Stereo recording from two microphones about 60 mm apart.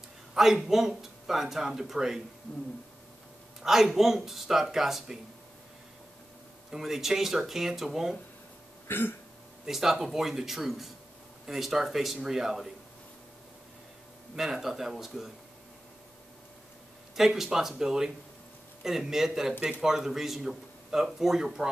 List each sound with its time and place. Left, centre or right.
0.3 s a sound: centre
0.7 s speech: centre
3.6 s speech: centre
6.7 s speech: centre
8.8 s throat clearing: left
9.7 s speech: centre
14.3 s speech: centre
17.1 s speech: centre